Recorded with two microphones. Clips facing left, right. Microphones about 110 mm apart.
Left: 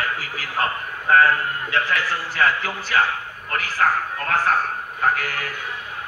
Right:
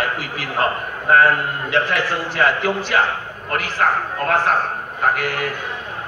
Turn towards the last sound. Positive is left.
turn(degrees=-25)  # may be behind; listen again after turning